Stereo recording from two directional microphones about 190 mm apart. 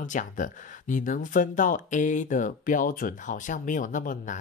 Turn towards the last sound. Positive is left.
turn(degrees=45)  # may be behind; listen again after turning